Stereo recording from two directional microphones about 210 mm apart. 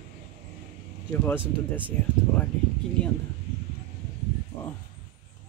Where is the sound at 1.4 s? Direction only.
25° right (ahead or behind).